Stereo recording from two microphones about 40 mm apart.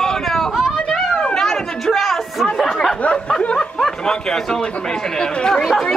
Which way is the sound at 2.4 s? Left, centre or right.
Centre.